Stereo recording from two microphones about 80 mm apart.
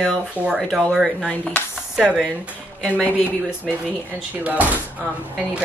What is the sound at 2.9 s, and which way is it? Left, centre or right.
Speech, left.